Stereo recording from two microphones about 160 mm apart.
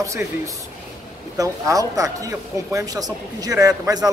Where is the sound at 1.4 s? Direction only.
20° right (ahead or behind).